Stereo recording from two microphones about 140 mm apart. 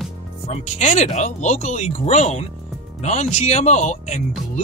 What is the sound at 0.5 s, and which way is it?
Speech, 55° left (ahead or behind).